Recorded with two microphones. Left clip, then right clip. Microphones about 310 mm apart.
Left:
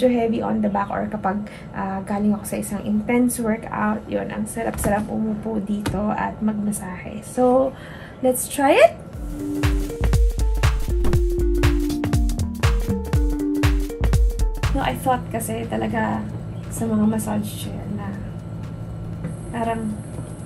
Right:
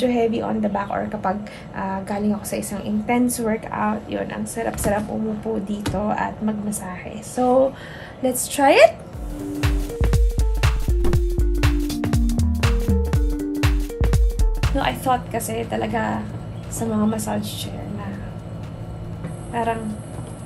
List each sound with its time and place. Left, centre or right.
0.0 s a woman's voice: centre
9.4 s music: centre
16.7 s a woman's voice: centre
19.5 s a woman's voice: centre